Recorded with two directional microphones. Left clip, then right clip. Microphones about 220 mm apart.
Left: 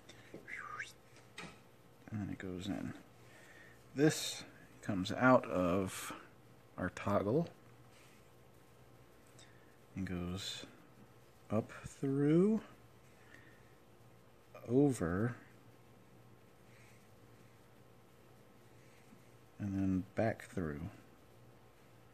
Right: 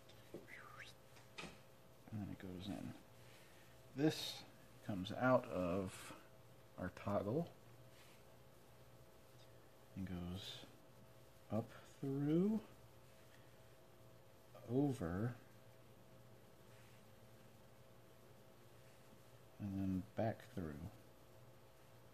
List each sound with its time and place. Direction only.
0.5 s a sound: 40° left (ahead or behind)
2.1 s a sound: 40° left (ahead or behind)
3.9 s speech: 45° left (ahead or behind)
9.9 s speech: 45° left (ahead or behind)
14.7 s speech: 45° left (ahead or behind)
19.6 s speech: 45° left (ahead or behind)